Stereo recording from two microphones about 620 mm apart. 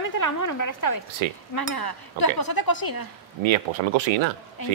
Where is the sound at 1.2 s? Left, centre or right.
Right.